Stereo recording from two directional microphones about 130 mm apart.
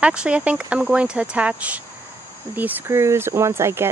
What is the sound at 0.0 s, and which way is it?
Speech, 10° right (ahead or behind).